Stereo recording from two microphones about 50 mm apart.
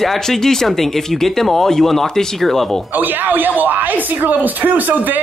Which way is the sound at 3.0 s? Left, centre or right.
Right.